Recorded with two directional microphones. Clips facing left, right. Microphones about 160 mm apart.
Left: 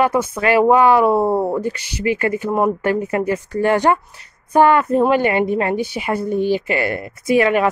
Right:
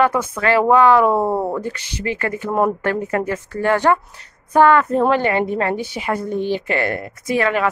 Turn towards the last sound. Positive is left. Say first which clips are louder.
# left 4 dB
turn(degrees=20)  # may be behind; listen again after turning